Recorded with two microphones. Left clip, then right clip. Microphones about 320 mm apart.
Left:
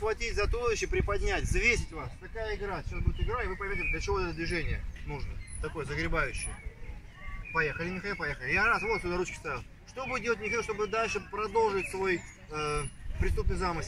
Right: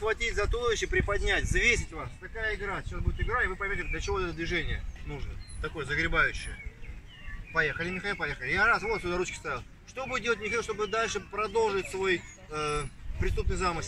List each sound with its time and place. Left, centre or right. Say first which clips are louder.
0.0 s speech: right 2 dB; centre
7.5 s speech: right 2 dB; centre